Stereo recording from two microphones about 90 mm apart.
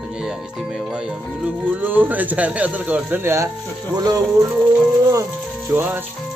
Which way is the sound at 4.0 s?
45° right (ahead or behind).